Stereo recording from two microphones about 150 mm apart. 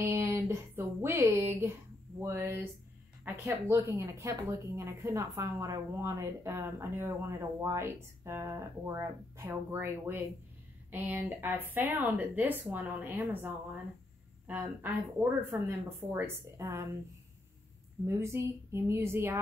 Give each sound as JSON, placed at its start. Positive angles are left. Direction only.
{"t": 0.0, "sound": "a woman's voice", "side_deg": -15}
{"t": 14.5, "sound": "a woman's voice", "side_deg": -15}
{"t": 18.0, "sound": "a woman's voice", "side_deg": -20}